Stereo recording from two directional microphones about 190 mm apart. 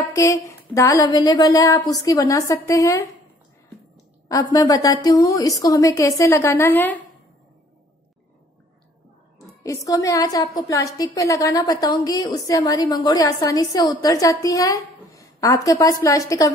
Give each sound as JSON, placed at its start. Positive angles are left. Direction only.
{"t": 0.1, "sound": "a woman's voice", "side_deg": 15}
{"t": 4.3, "sound": "a woman's voice", "side_deg": 20}
{"t": 9.6, "sound": "a woman's voice", "side_deg": 15}